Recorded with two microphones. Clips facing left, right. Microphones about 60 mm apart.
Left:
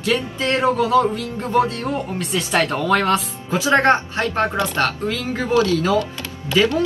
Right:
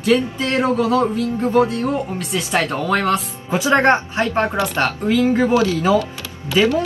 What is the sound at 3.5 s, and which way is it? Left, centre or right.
Speech, right.